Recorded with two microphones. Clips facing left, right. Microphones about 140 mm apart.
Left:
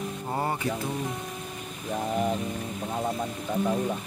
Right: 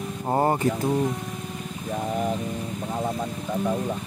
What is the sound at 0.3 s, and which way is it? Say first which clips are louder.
Speech: right 8 dB; 45° right (ahead or behind).